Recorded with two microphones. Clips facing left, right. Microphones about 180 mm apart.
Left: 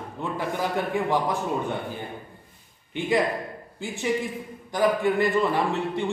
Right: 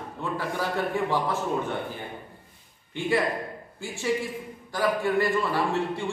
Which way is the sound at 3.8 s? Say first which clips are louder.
Left 1 dB; 20° left (ahead or behind).